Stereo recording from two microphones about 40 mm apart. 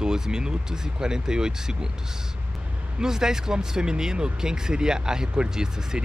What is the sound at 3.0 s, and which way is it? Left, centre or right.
Speech, centre.